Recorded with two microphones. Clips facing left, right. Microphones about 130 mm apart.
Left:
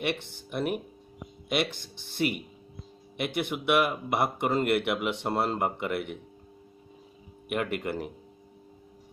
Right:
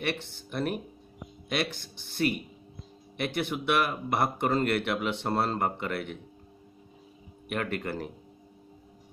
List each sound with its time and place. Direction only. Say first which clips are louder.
0.0 s speech: left 1 dB; 15° left (ahead or behind)
7.4 s speech: left 2 dB; 15° left (ahead or behind)